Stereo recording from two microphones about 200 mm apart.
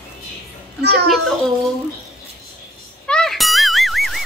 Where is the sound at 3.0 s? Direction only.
5° left (ahead or behind).